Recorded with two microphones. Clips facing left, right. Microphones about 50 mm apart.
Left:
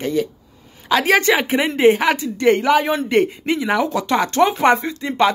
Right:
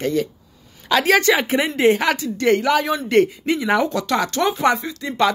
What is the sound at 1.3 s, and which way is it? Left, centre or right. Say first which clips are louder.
Speech: left 1 dB; centre.